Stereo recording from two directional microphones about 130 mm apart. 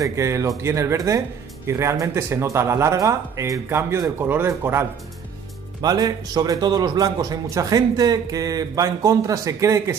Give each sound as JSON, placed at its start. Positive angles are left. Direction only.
{"t": 0.0, "sound": "speech", "side_deg": -20}
{"t": 5.8, "sound": "speech", "side_deg": -30}